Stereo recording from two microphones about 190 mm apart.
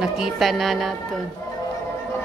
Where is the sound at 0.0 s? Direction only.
Centre (ahead or behind).